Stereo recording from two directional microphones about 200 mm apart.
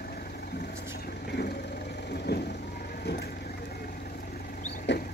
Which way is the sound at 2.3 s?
55° left (ahead or behind).